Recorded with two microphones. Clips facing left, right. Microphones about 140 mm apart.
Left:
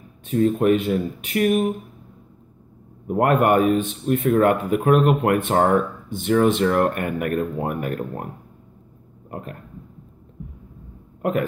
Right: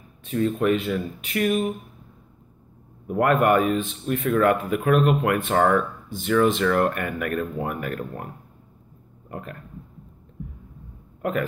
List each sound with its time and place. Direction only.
0.3 s speech: 45° left (ahead or behind)
3.1 s speech: 45° left (ahead or behind)
9.3 s speech: 45° left (ahead or behind)